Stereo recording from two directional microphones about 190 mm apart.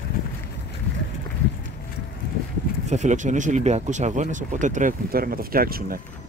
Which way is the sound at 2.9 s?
40° right (ahead or behind).